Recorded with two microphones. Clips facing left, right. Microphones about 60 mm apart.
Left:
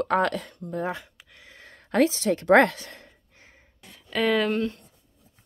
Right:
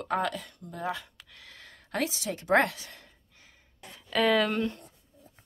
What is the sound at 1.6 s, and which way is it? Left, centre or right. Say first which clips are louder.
Speech: left 10 dB; left.